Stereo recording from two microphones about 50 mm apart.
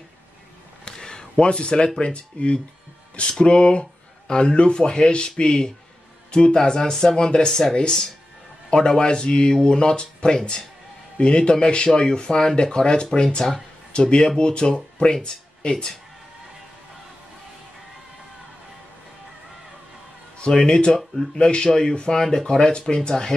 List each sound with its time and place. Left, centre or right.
0.8 s a sound: centre
2.0 s speech: left
20.4 s speech: centre